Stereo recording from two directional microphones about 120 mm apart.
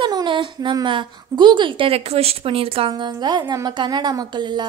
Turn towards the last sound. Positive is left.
turn(degrees=-40)  # may be behind; listen again after turning